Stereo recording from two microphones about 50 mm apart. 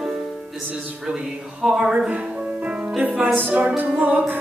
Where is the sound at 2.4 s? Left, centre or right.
Right.